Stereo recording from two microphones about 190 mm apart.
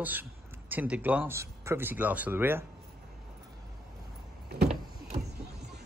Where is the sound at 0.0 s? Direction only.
10° right (ahead or behind).